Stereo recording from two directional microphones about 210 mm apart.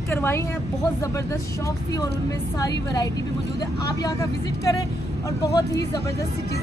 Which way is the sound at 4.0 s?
15° left (ahead or behind).